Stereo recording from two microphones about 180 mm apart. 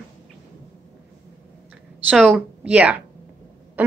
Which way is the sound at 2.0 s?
5° right (ahead or behind).